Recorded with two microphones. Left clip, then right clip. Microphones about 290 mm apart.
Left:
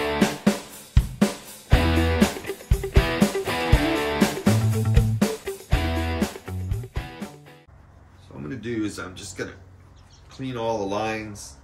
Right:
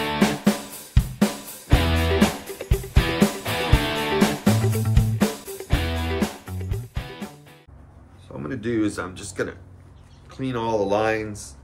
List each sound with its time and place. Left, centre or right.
0.0 s music: centre
8.5 s speech: centre